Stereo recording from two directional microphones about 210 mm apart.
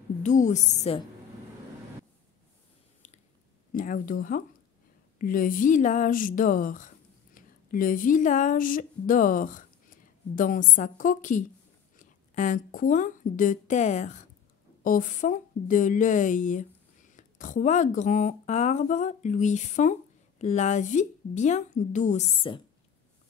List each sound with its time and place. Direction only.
0.2 s speech: 35° left (ahead or behind)
3.7 s a woman's voice: 40° left (ahead or behind)